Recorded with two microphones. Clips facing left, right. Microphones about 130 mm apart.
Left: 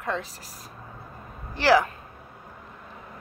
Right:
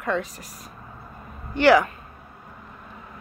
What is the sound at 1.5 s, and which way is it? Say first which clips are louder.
Speech: right 3 dB; 30° left (ahead or behind).